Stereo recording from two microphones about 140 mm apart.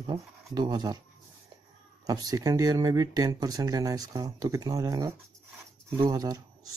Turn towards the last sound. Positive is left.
turn(degrees=-25)  # may be behind; listen again after turning